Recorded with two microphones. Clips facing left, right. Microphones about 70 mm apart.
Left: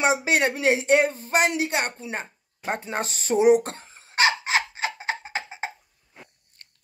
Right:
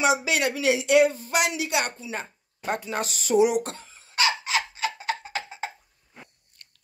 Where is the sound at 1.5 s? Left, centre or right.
Left.